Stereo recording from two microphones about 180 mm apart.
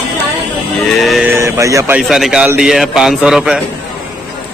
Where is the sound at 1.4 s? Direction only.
15° right (ahead or behind).